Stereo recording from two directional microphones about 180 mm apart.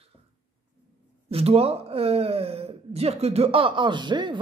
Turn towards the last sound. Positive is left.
turn(degrees=-25)  # may be behind; listen again after turning